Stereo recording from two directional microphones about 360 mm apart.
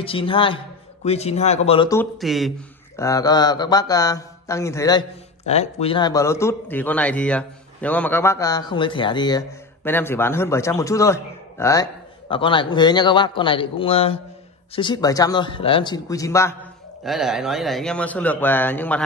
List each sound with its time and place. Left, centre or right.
0.0 s a man's voice: centre